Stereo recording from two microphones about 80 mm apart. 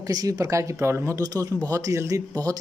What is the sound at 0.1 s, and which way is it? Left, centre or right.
Speech, right.